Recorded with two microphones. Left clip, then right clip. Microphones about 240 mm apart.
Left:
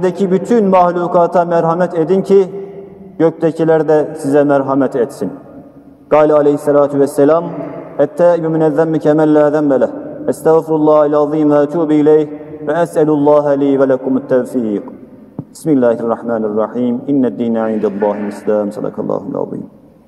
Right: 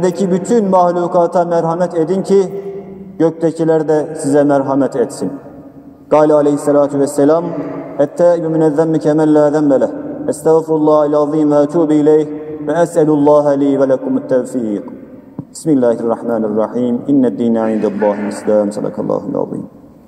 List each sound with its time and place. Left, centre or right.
0.0 s a man's voice: left